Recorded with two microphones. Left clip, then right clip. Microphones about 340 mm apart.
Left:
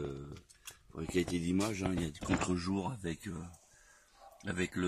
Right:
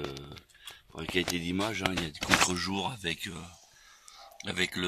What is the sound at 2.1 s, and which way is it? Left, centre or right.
Speech, right.